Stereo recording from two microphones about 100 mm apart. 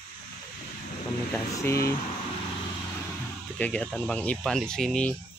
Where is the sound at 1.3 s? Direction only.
30° left (ahead or behind).